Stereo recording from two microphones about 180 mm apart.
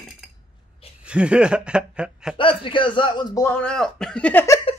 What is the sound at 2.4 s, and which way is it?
Speech, 30° left (ahead or behind).